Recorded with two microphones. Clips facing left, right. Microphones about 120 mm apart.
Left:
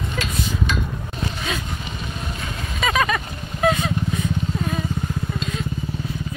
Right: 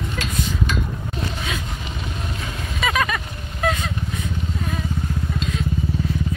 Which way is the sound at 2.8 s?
Centre (ahead or behind).